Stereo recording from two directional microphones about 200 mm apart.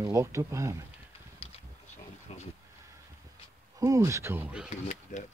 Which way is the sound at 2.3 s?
35° left (ahead or behind).